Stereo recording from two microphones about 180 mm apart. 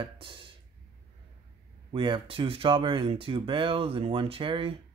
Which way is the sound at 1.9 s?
25° right (ahead or behind).